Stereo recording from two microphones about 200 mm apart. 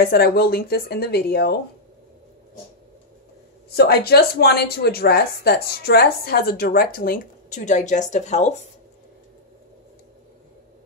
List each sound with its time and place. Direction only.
0.0 s speech: 50° left (ahead or behind)
3.7 s speech: 50° left (ahead or behind); by 8.6 s 35° left (ahead or behind)